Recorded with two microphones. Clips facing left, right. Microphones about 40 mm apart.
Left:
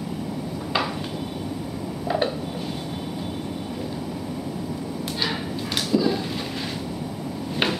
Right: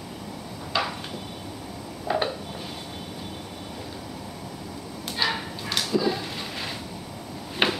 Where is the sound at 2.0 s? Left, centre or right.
Centre.